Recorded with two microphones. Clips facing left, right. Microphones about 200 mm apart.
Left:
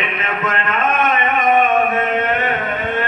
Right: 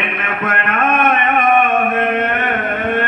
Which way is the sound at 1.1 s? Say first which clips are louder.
Right 2 dB; 55° right (ahead or behind).